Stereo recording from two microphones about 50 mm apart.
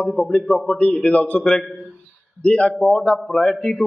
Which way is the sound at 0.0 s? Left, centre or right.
Left.